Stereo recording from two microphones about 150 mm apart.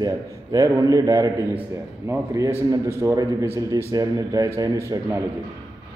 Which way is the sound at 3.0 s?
20° right (ahead or behind).